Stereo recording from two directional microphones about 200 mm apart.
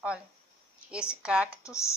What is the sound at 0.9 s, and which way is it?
Speech, 5° right (ahead or behind).